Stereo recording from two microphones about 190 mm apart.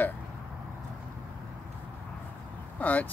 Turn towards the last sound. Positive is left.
turn(degrees=10)  # may be behind; listen again after turning